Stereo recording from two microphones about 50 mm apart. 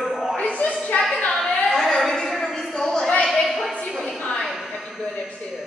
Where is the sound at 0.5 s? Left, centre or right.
Left.